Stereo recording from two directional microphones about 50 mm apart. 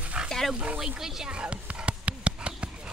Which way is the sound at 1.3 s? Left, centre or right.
Right.